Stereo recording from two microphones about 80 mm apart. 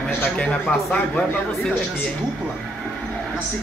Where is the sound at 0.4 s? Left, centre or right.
Centre.